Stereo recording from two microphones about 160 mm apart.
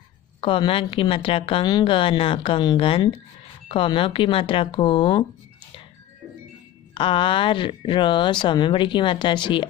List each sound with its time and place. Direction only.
0.4 s speech: 35° left (ahead or behind)
6.9 s speech: 35° left (ahead or behind)